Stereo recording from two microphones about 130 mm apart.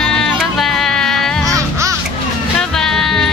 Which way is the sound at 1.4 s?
25° right (ahead or behind).